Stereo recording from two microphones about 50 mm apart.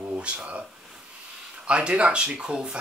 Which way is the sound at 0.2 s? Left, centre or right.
Right.